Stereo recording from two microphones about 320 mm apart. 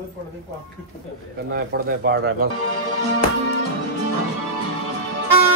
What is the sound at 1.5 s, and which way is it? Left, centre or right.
Speech, right.